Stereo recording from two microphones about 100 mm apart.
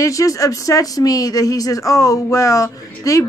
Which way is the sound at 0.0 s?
35° left (ahead or behind).